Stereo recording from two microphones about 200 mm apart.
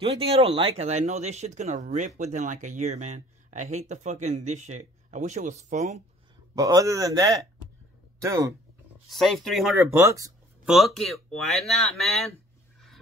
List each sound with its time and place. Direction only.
0.0 s speech: 30° right (ahead or behind)
6.5 s speech: 15° right (ahead or behind)
9.1 s speech: centre (ahead or behind)
9.9 s speech: 15° right (ahead or behind)
10.6 s speech: centre (ahead or behind)